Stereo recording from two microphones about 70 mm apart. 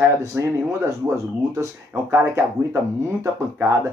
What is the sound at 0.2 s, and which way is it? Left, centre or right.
Speech, right.